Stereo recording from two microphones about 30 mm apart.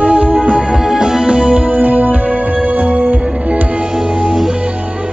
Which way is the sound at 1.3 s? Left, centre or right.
Right.